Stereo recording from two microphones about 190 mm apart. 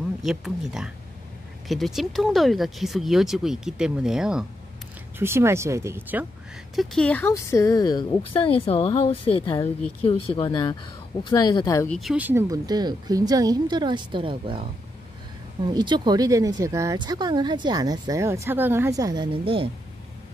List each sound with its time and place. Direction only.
0.2 s speech: centre (ahead or behind)
6.7 s speech: centre (ahead or behind); by 11.9 s 20° left (ahead or behind)
11.9 s speech: centre (ahead or behind); by 14.6 s 25° right (ahead or behind)
15.6 s speech: 25° right (ahead or behind)